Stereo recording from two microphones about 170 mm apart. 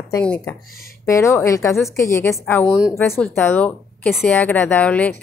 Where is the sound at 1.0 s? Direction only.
15° left (ahead or behind).